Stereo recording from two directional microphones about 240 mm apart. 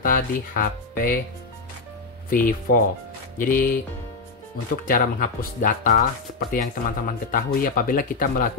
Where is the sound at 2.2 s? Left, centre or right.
Left.